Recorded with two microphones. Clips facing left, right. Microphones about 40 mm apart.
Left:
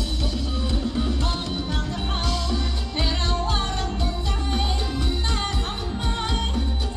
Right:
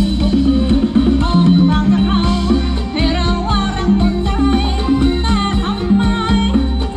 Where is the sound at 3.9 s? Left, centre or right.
Right.